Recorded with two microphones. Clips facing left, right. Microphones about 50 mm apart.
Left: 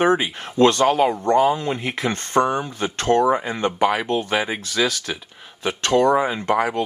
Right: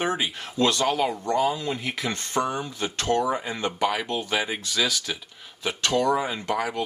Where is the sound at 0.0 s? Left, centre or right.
Left.